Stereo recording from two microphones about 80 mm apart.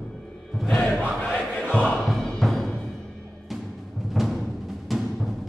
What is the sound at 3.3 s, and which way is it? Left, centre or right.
Timpani, centre.